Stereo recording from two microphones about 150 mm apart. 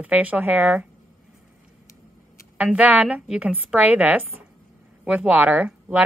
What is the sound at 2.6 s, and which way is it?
Speech, 10° right (ahead or behind).